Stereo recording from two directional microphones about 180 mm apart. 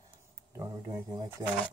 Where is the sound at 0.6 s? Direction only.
20° right (ahead or behind).